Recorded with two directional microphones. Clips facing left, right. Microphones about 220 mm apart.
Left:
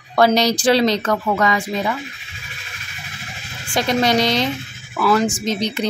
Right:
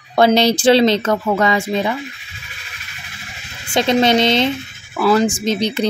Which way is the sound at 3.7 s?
25° right (ahead or behind).